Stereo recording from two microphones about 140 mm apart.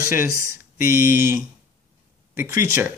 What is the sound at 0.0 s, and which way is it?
Speech, 20° right (ahead or behind).